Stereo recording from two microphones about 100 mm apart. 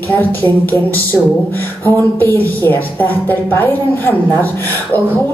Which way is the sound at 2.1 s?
20° left (ahead or behind).